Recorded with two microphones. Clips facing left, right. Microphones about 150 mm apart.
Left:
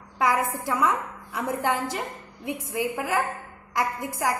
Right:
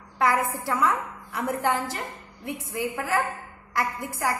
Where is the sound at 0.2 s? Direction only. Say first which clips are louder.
Even; 20° left (ahead or behind).